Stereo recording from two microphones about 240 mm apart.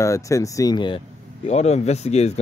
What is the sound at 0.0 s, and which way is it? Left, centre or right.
Speech, centre.